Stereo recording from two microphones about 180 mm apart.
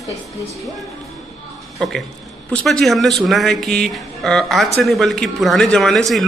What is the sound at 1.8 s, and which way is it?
A man's voice, 5° left (ahead or behind).